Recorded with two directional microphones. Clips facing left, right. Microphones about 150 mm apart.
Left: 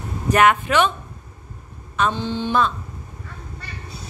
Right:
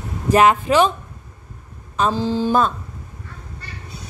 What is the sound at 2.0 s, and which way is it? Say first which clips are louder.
Mantra: right 3 dB; 35° right (ahead or behind).